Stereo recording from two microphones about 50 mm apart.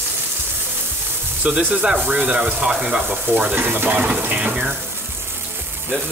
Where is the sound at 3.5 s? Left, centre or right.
Right.